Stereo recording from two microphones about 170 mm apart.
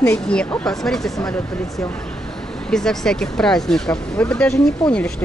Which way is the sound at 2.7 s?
5° left (ahead or behind).